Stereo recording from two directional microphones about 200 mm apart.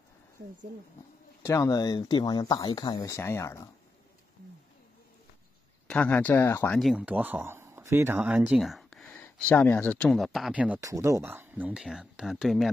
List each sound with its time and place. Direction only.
1.4 s speech: 15° left (ahead or behind)
5.9 s speech: 5° left (ahead or behind)
6.8 s speech: 5° right (ahead or behind)